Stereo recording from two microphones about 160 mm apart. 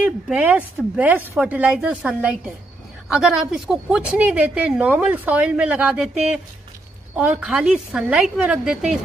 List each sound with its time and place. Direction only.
0.0 s a woman's voice: 10° right (ahead or behind)
7.2 s a woman's voice: 5° right (ahead or behind)